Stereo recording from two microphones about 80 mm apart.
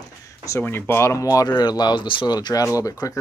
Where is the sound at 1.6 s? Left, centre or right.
Left.